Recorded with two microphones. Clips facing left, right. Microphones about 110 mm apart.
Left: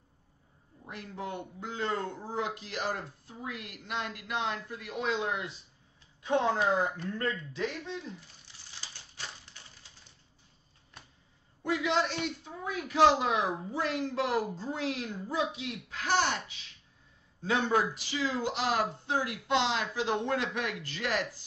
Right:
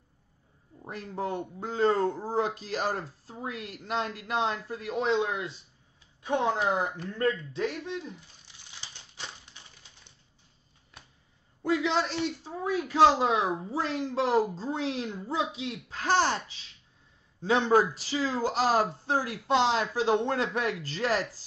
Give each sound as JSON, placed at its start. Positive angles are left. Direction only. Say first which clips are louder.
{"t": 0.8, "sound": "speech", "louder": "right 6 dB", "side_deg": -35}
{"t": 8.6, "sound": "typewriter", "louder": "right 1 dB", "side_deg": -20}
{"t": 11.6, "sound": "speech", "louder": "right 2 dB", "side_deg": -30}